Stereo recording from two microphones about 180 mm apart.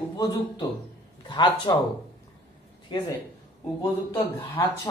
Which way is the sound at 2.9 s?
25° left (ahead or behind).